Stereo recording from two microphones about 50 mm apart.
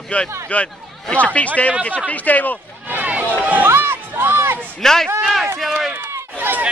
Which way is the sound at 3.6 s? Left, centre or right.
Right.